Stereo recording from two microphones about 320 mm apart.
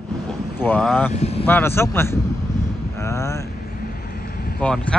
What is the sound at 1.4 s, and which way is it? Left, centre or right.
Speech, centre.